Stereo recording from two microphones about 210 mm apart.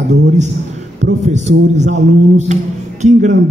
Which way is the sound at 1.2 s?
35° right (ahead or behind).